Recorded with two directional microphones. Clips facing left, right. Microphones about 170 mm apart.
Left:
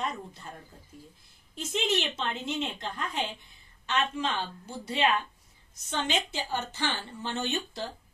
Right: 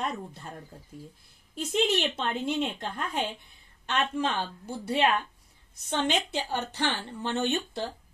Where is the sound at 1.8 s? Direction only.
55° right (ahead or behind).